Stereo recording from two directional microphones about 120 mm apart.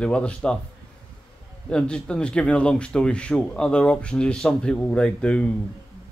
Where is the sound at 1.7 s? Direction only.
10° left (ahead or behind).